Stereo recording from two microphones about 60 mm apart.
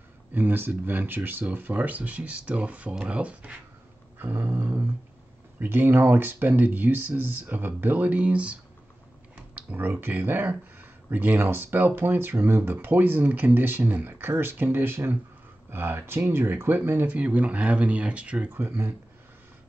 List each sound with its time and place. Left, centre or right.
0.3 s speech: right
4.2 s speech: right
9.6 s computer keyboard: right
9.8 s speech: right
18.5 s speech: right